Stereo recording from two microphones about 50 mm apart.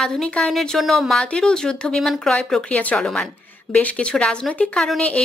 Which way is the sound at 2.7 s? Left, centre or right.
Left.